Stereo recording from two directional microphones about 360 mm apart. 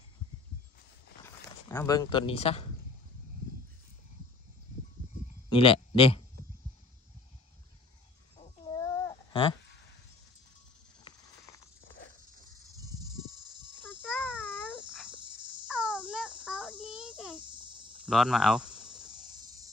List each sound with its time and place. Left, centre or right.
1.2 s speech: centre
5.5 s speech: centre
8.4 s chicken: centre
12.6 s a sound: centre
14.0 s a sound: centre
15.0 s insect: centre
17.4 s insect: centre
18.0 s speech: centre